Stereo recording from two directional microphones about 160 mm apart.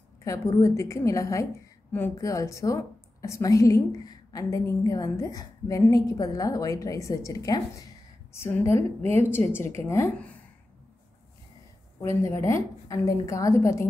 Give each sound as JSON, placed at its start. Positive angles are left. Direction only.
{"t": 0.2, "sound": "a woman's voice", "side_deg": 20}
{"t": 12.0, "sound": "a woman's voice", "side_deg": 20}